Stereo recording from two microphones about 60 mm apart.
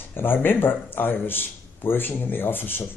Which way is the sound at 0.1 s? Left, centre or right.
Left.